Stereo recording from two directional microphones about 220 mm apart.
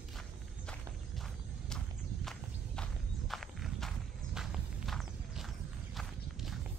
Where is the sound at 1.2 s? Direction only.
Centre (ahead or behind).